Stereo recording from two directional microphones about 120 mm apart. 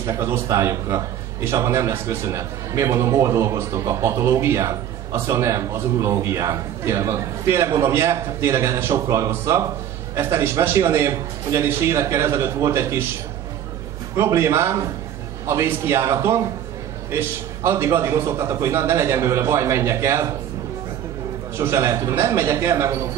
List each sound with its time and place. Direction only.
0.0 s a man's voice: 25° right (ahead or behind)
14.1 s a man's voice: 25° right (ahead or behind)
21.5 s a man's voice: 25° right (ahead or behind)